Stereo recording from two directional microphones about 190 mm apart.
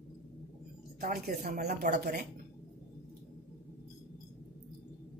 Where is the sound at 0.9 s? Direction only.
50° right (ahead or behind).